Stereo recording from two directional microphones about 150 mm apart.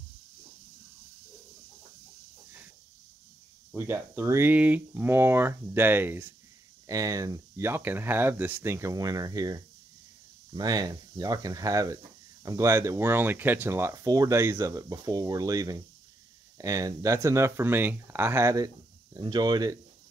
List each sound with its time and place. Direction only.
3.7 s speech: 15° right (ahead or behind)